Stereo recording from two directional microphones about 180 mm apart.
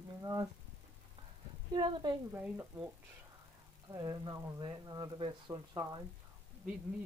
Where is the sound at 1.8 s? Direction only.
25° right (ahead or behind).